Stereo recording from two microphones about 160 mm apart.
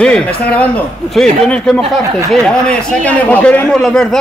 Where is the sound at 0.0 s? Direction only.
5° left (ahead or behind).